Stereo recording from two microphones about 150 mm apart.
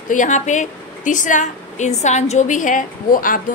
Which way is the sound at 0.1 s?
55° left (ahead or behind).